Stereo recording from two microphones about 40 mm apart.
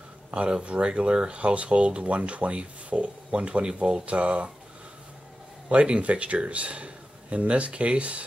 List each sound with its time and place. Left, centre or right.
0.3 s speech: right
5.7 s speech: right